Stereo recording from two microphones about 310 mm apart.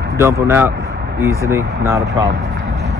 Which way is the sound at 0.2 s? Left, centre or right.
Centre.